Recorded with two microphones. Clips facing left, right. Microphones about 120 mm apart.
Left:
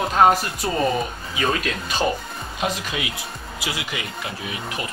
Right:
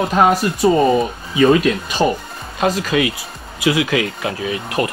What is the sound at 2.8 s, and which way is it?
Speech, 90° right.